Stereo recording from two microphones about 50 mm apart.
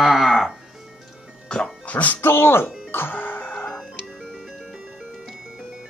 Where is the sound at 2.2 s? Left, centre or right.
Left.